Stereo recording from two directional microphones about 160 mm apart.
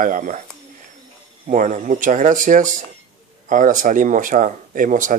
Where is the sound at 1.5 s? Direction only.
55° right (ahead or behind).